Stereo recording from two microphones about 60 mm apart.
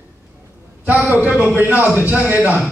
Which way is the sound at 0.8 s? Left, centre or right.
Right.